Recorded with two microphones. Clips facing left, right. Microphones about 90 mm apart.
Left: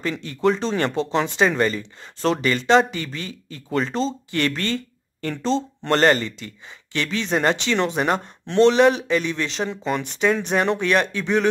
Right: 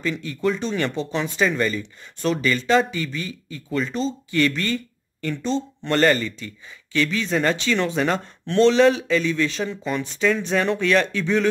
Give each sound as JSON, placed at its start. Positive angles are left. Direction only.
{"t": 0.0, "sound": "speech", "side_deg": 30}
{"t": 5.9, "sound": "speech", "side_deg": 25}
{"t": 9.7, "sound": "speech", "side_deg": 55}
{"t": 10.5, "sound": "speech", "side_deg": 20}